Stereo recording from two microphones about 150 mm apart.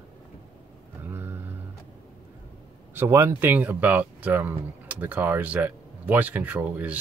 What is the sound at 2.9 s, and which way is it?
Speech, 15° right (ahead or behind).